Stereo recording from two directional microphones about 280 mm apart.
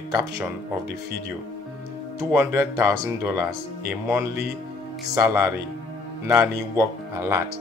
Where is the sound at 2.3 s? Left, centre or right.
Centre.